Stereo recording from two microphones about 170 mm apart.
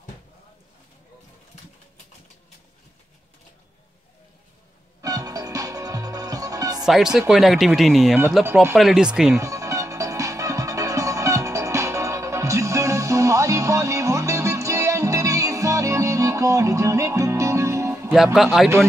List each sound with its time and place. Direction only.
5.0 s music: 20° right (ahead or behind)
6.8 s speech: 5° right (ahead or behind)
9.4 s music: 20° right (ahead or behind)
18.1 s speech: centre (ahead or behind)